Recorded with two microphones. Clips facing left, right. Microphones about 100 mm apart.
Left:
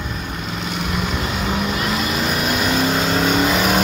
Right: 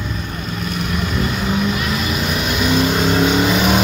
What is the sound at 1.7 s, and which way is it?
Vehicle, 30° left (ahead or behind).